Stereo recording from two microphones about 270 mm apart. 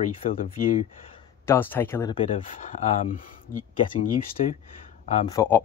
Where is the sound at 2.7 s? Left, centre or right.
Left.